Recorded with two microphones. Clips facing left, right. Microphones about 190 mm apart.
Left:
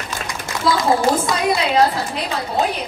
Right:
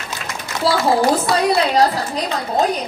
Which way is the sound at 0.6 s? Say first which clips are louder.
Right 1 dB; 30° right (ahead or behind).